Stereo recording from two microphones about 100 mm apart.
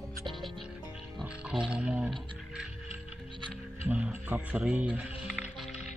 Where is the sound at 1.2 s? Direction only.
10° right (ahead or behind).